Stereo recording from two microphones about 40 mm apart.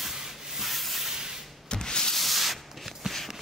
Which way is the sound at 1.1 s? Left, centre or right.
Centre.